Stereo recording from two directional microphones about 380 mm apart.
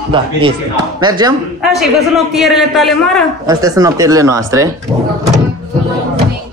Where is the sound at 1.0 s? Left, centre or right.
Centre.